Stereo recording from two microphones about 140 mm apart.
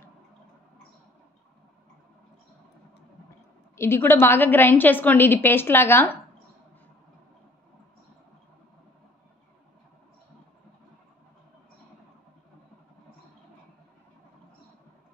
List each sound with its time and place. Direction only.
3.7 s a woman's voice: 15° left (ahead or behind)